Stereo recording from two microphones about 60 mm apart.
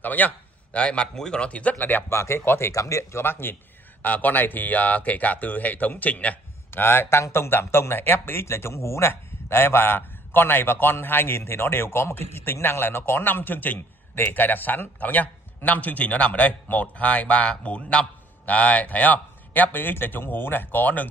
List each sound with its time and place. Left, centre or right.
0.0 s speech: left
0.7 s speech: centre
2.0 s speech: left
2.7 s speech: left
6.7 s speech: left